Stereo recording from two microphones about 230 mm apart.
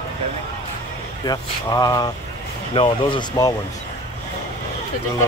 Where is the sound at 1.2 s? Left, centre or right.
Centre.